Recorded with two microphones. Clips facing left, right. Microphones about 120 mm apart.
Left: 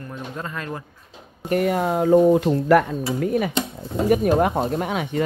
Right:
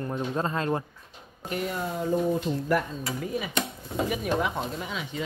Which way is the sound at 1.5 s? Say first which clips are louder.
Left 10 dB; 60° left (ahead or behind).